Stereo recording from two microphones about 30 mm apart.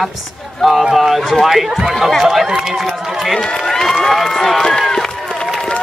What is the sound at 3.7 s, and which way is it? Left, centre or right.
Crowd, centre.